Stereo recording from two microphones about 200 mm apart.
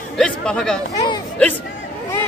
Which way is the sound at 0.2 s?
5° left (ahead or behind).